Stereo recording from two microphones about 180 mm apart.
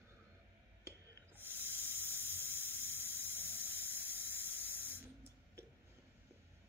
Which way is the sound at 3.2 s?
10° left (ahead or behind).